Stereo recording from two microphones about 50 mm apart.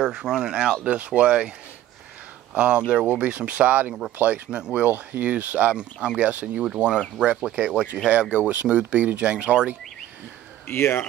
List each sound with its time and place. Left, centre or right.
0.0 s speech: centre
0.8 s speech: right
2.5 s speech: right
4.5 s speech: centre
4.8 s speech: right
5.8 s speech: centre
10.7 s speech: left